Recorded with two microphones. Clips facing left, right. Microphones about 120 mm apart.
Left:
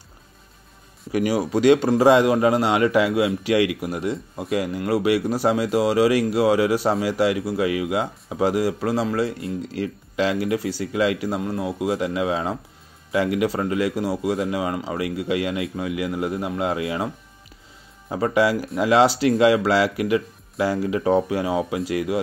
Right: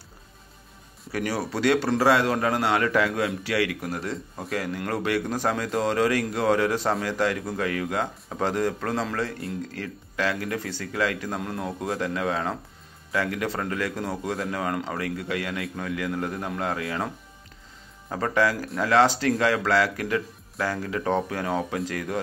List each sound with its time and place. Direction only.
1.1 s a man's voice: 15° left (ahead or behind)
18.1 s a man's voice: 15° left (ahead or behind)